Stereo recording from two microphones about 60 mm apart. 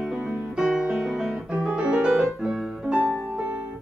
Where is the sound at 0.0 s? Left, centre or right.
Centre.